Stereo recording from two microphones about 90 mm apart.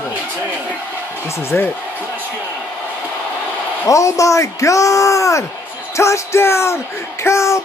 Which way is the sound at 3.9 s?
35° left (ahead or behind).